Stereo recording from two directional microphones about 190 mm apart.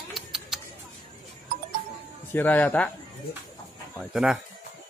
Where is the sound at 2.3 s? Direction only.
10° left (ahead or behind).